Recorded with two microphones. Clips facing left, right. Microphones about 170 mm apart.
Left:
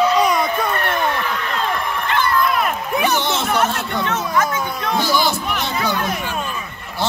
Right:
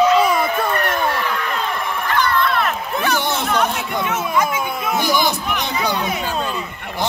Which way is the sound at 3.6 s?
10° right (ahead or behind).